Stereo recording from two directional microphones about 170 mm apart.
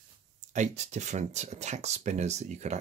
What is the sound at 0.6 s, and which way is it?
Speech, 45° right (ahead or behind).